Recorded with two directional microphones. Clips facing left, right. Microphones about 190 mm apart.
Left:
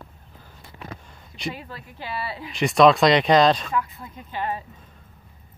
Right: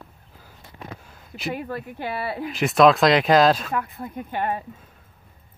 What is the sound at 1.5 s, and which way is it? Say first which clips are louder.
Speech: right 11 dB; 55° right (ahead or behind).